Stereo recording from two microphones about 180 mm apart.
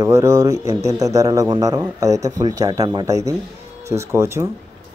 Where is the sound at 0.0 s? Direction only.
15° right (ahead or behind).